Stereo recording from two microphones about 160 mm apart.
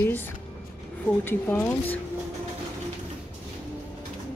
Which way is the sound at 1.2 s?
15° left (ahead or behind).